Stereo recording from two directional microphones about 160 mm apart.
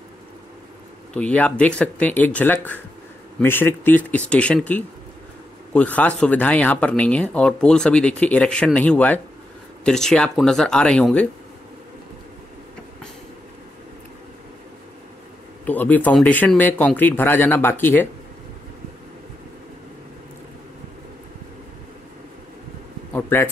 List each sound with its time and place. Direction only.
1.1 s speech: 10° left (ahead or behind)
15.6 s speech: 10° left (ahead or behind)
23.1 s a sound: 15° left (ahead or behind)